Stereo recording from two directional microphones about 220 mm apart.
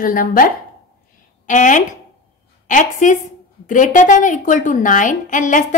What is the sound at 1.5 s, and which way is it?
A woman's voice, 35° left (ahead or behind).